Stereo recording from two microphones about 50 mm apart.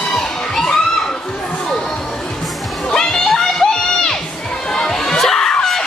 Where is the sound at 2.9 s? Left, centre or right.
Centre.